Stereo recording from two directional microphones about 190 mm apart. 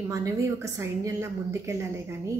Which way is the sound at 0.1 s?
15° right (ahead or behind).